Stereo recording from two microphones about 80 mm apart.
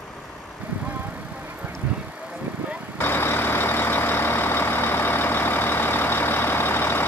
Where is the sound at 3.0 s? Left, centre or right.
Left.